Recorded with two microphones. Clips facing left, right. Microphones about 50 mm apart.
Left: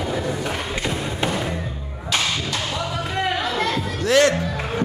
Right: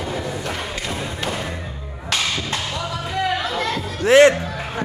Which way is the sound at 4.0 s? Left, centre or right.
Right.